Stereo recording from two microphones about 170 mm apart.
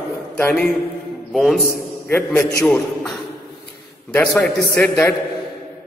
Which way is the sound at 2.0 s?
10° left (ahead or behind).